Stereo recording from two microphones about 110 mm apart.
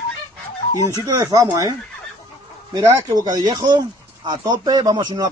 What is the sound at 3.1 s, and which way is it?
Speech, 35° right (ahead or behind).